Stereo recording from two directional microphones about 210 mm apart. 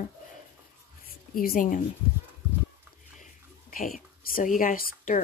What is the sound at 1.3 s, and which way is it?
Speech, 45° left (ahead or behind).